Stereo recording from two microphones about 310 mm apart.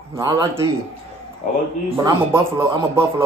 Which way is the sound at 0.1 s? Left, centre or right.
Centre.